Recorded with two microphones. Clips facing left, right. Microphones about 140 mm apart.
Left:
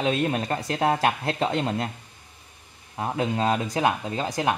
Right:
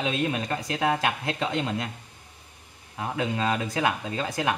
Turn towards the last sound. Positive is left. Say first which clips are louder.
# left 2 dB
turn(degrees=30)  # may be behind; listen again after turning